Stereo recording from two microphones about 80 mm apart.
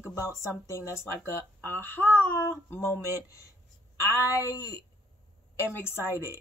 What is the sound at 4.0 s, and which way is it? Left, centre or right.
Speech, left.